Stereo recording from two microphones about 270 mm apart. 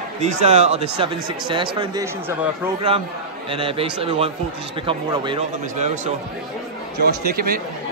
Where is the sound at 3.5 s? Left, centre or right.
Centre.